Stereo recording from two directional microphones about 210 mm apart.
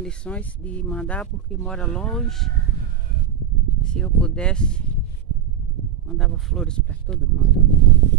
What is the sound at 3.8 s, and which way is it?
Speech, 5° left (ahead or behind).